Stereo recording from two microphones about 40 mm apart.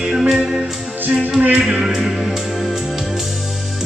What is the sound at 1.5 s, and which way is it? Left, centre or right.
Music, centre.